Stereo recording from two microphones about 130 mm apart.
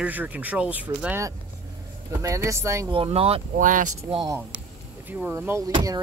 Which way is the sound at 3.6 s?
90° right.